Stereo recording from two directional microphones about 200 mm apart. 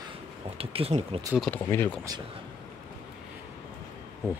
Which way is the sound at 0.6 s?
30° right (ahead or behind).